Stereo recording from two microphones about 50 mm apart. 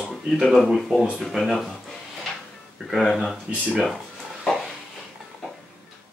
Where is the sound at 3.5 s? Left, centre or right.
Right.